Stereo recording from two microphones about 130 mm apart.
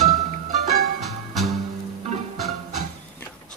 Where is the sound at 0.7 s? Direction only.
Centre (ahead or behind).